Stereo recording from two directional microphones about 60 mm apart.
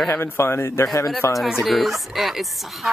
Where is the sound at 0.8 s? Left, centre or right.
Left.